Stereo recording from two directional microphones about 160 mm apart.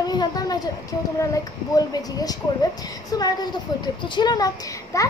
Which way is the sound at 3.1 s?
25° left (ahead or behind).